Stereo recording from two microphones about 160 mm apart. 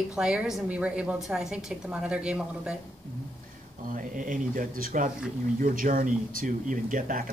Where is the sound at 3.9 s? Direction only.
60° right (ahead or behind).